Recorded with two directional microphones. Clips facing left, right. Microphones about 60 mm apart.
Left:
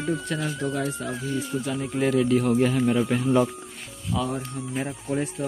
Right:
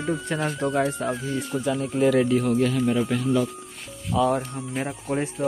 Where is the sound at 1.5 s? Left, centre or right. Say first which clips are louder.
Right 5 dB; right.